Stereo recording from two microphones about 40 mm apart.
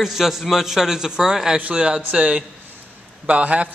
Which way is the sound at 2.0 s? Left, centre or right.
Right.